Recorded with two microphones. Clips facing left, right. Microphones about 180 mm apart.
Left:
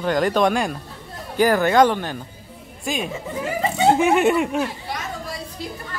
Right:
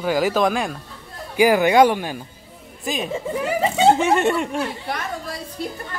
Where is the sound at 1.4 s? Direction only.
10° right (ahead or behind).